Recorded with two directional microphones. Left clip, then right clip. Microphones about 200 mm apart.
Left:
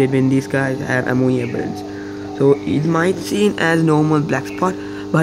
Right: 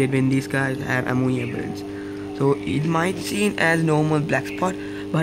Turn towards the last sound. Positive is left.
turn(degrees=0)  # may be behind; listen again after turning